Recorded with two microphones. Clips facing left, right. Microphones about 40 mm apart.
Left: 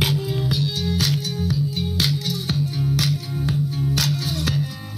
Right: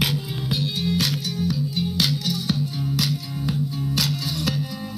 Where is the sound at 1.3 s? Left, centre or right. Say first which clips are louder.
Left 1 dB; left.